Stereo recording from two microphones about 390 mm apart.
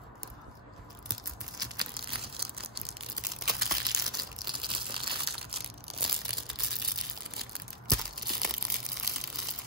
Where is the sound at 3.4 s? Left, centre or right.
Centre.